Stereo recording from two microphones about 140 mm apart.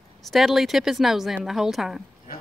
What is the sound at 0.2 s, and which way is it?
A woman's voice, centre (ahead or behind).